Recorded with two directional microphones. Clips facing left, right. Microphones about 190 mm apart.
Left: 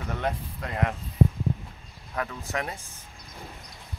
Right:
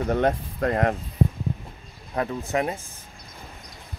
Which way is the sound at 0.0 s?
40° right (ahead or behind).